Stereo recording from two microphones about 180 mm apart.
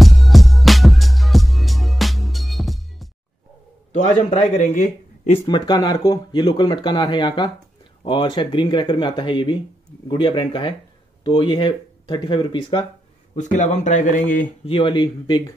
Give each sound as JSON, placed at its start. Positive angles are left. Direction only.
{"t": 0.0, "sound": "music", "side_deg": 0}
{"t": 3.9, "sound": "a man's voice", "side_deg": 40}
{"t": 5.4, "sound": "speech", "side_deg": 25}
{"t": 13.4, "sound": "a man's voice", "side_deg": 40}
{"t": 14.7, "sound": "speech", "side_deg": 30}